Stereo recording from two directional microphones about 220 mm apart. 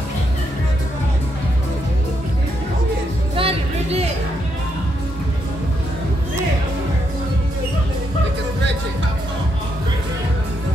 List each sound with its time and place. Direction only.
3.3 s music: 25° right (ahead or behind)